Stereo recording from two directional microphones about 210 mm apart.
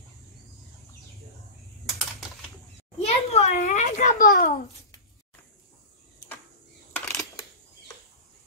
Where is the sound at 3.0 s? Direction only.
30° left (ahead or behind).